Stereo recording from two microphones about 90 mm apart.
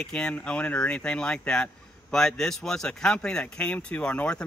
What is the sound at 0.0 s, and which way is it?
Speech, 10° left (ahead or behind).